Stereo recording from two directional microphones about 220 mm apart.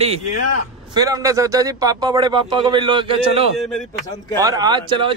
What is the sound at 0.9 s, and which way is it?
Speech, 15° right (ahead or behind).